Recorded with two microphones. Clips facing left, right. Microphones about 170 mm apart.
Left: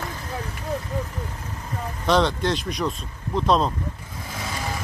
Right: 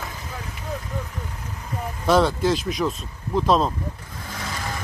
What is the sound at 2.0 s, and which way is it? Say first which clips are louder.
Speech: right 2 dB; 5° right (ahead or behind).